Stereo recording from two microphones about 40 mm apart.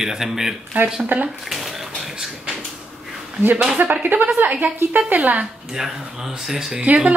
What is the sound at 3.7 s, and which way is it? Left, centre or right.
Speech, right.